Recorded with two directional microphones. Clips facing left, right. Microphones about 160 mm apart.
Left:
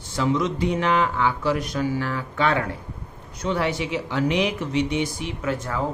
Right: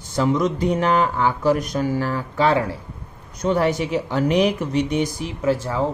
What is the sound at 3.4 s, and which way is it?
A man's voice, 45° right (ahead or behind).